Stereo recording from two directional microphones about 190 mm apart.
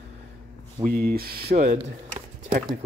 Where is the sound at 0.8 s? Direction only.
55° right (ahead or behind).